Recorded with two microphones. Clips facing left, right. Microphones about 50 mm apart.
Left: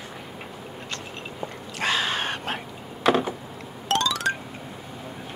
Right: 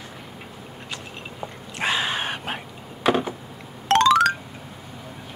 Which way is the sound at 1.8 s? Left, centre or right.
Centre.